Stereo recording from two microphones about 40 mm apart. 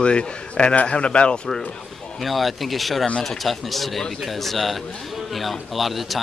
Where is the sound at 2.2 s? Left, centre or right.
Centre.